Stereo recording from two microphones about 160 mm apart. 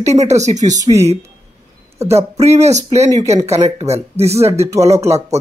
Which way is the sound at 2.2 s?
40° right (ahead or behind).